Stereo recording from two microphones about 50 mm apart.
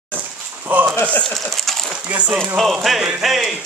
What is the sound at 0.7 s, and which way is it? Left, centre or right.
Speech, right.